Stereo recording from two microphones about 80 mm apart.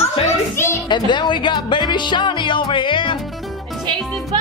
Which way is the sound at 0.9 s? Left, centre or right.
Left.